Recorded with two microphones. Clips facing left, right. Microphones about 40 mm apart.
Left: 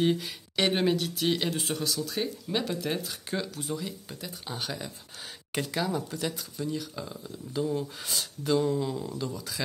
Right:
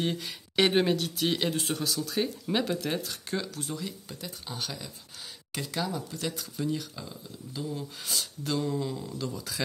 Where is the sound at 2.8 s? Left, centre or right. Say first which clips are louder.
Even; centre.